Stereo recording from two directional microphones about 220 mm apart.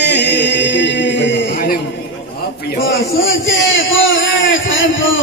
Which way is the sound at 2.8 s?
55° left (ahead or behind).